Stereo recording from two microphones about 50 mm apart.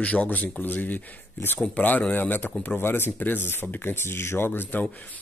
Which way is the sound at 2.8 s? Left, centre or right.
Left.